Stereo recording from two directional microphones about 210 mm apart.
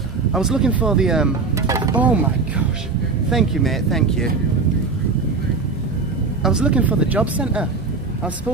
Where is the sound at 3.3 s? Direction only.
Centre (ahead or behind).